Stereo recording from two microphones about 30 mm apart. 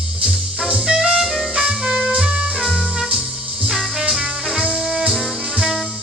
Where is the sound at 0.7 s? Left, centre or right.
Right.